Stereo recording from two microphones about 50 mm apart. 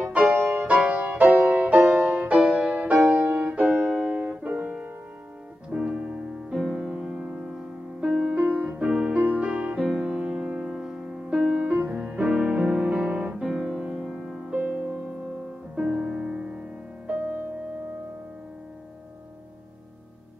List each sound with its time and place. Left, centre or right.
0.0 s music: right
4.0 s music: right
8.4 s piano: right
9.2 s music: right
9.5 s music: right
11.2 s music: centre
11.6 s music: right
11.9 s music: right
13.4 s music: centre
15.7 s music: centre